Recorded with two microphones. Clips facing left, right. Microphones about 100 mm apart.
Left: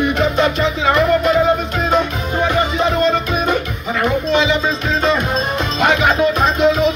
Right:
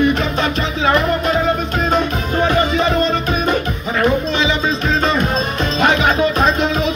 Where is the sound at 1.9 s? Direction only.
10° left (ahead or behind).